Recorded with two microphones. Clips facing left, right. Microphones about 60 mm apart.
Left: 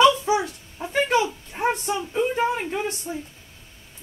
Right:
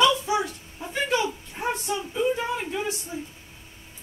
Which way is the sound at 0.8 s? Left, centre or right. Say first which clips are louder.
Left 4 dB; left.